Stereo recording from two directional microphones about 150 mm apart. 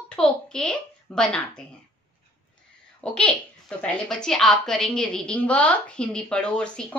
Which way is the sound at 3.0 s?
5° left (ahead or behind).